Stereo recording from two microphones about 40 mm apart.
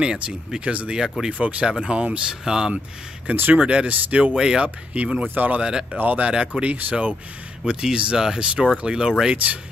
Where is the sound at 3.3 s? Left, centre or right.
Right.